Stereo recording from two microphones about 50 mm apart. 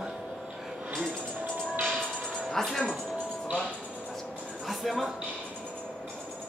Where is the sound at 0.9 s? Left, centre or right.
Centre.